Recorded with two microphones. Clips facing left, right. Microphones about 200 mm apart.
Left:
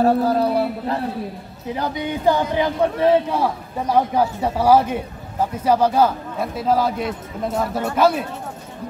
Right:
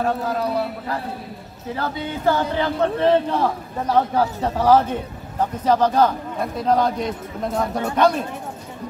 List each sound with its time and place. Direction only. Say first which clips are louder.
0.0 s a man's voice: left 6 dB; 30° left (ahead or behind)
1.7 s speech: left 2 dB; 15° left (ahead or behind)